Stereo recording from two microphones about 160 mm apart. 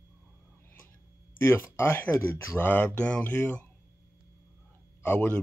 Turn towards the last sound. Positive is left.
turn(degrees=10)  # may be behind; listen again after turning